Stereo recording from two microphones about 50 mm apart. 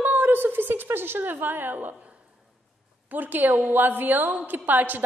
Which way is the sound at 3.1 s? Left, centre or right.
Right.